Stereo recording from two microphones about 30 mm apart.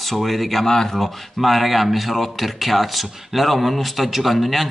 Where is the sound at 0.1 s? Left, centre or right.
Centre.